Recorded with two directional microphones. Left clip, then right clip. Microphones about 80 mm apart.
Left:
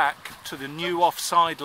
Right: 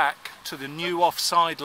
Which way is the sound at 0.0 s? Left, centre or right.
Right.